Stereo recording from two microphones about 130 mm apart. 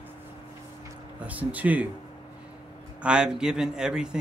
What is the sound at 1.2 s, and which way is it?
Speech, 10° right (ahead or behind).